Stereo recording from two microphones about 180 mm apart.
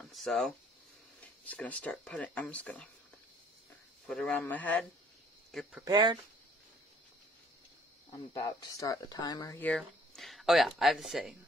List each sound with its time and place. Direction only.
0.0 s speech: centre (ahead or behind)
4.1 s speech: 5° left (ahead or behind)
5.9 s speech: 25° right (ahead or behind)
8.3 s speech: 20° left (ahead or behind)
9.6 s speech: 5° left (ahead or behind)